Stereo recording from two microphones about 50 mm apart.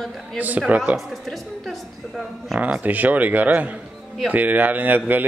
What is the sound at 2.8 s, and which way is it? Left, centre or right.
A woman's voice, right.